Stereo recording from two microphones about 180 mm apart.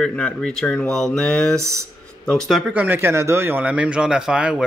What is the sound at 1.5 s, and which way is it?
Speech, 15° right (ahead or behind).